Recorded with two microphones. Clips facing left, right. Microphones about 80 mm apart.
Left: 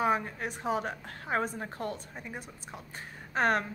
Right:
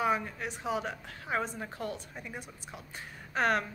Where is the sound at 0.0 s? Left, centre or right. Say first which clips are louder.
Left 2 dB; left.